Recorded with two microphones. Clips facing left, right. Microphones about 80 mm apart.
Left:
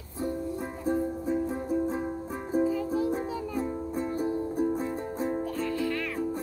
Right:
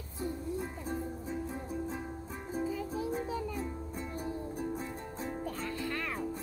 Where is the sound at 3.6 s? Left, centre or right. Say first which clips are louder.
Left 9 dB; left.